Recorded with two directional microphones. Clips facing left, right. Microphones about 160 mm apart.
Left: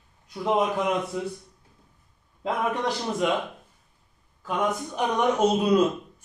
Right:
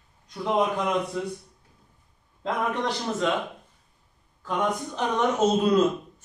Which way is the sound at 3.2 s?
15° left (ahead or behind).